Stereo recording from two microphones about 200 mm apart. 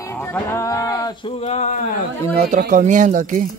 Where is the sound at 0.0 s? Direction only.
10° left (ahead or behind); by 1.8 s 35° left (ahead or behind).